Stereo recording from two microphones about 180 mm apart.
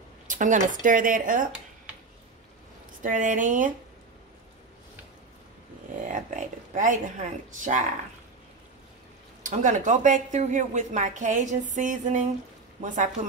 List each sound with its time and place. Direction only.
0.3 s speech: 45° right (ahead or behind)
3.0 s speech: 45° right (ahead or behind)
6.0 s speech: 45° right (ahead or behind)
9.4 s speech: 45° right (ahead or behind)